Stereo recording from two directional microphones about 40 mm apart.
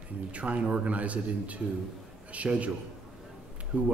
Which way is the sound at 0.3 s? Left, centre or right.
Right.